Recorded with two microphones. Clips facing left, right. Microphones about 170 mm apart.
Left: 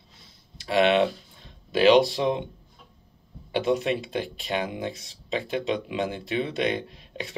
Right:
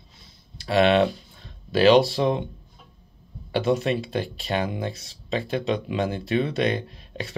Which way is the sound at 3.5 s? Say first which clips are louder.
Right 2 dB; 15° left (ahead or behind).